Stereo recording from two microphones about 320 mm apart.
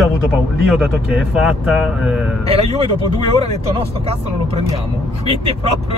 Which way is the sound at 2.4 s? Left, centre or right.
Centre.